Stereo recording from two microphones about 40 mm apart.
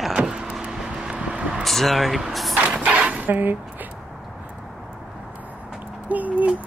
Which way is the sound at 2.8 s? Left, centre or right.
Right.